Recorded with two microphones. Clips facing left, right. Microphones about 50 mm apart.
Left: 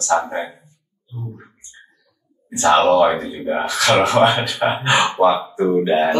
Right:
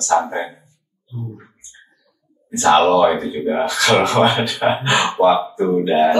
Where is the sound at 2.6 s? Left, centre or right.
Left.